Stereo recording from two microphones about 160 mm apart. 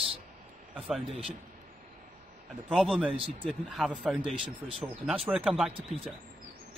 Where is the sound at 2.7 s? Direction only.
Centre (ahead or behind).